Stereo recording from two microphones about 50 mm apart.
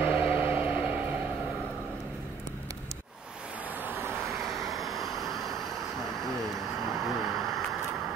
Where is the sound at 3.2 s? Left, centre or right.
Centre.